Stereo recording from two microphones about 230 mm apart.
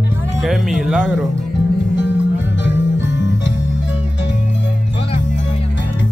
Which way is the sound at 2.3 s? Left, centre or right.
Left.